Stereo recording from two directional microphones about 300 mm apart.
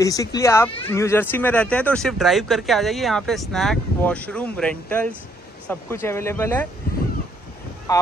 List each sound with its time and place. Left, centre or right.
0.0 s speech: centre
7.9 s speech: centre